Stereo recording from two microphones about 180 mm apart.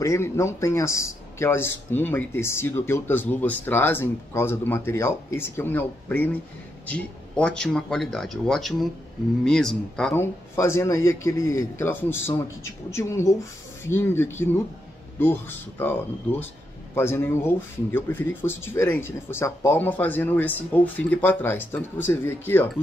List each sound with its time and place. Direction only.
0.0 s a man's voice: 15° left (ahead or behind)
10.5 s a man's voice: 15° left (ahead or behind)